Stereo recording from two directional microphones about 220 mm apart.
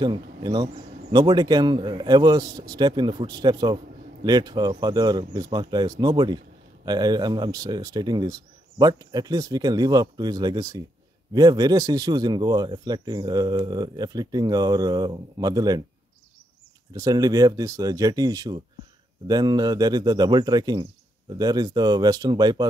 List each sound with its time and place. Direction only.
0.0 s a man's voice: 20° right (ahead or behind)
16.9 s a man's voice: 15° right (ahead or behind)